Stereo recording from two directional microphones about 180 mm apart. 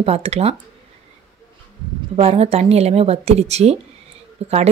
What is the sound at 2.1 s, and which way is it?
A woman's voice, 35° right (ahead or behind).